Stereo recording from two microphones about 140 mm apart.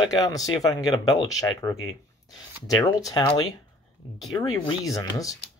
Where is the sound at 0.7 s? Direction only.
25° left (ahead or behind).